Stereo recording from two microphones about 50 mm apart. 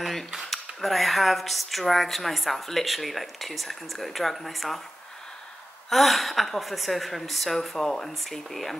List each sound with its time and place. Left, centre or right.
0.0 s speech: centre
5.9 s speech: centre